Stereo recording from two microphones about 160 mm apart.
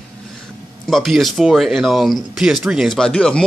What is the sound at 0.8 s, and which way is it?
Speech, centre (ahead or behind).